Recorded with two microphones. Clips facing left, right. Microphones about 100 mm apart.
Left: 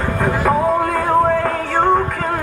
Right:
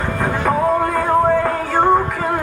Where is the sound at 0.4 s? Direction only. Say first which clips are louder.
Even; centre (ahead or behind).